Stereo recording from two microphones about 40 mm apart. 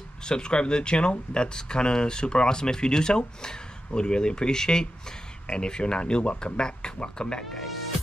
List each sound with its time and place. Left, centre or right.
0.2 s speech: left